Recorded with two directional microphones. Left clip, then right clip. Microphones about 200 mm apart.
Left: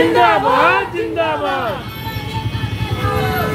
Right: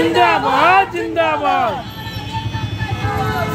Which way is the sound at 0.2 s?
55° right (ahead or behind).